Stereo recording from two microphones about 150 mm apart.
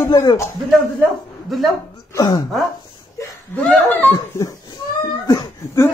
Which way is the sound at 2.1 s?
25° left (ahead or behind).